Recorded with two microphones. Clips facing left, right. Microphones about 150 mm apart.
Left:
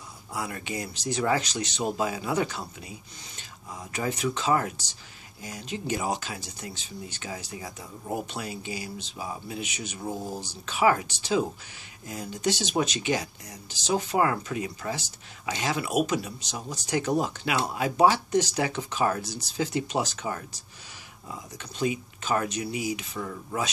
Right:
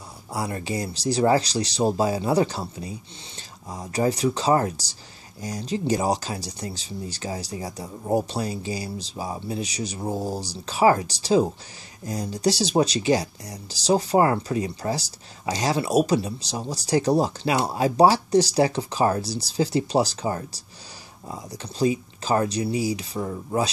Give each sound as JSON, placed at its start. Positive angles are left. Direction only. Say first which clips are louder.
{"t": 0.3, "sound": "speech", "louder": "right 5 dB", "side_deg": -35}